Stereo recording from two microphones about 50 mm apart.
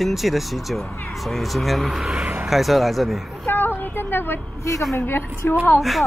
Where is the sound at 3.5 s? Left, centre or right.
Left.